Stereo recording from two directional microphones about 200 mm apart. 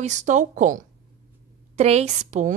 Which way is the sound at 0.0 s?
35° right (ahead or behind).